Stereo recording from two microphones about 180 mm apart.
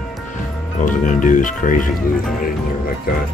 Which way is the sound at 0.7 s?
45° left (ahead or behind).